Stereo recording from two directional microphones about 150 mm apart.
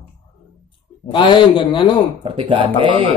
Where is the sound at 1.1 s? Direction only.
35° left (ahead or behind).